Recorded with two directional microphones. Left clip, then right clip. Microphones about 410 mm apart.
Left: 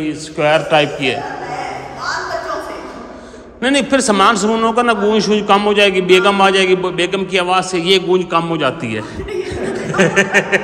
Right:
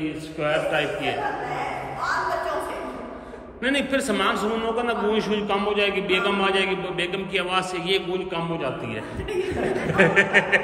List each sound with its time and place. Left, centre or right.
0.4 s a man's voice: centre
3.6 s a man's voice: centre